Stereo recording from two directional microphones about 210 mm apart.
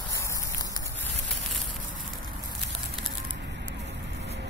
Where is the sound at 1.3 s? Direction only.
65° right (ahead or behind).